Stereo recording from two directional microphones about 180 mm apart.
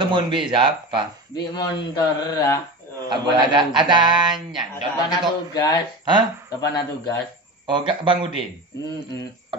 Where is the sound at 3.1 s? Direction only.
25° right (ahead or behind).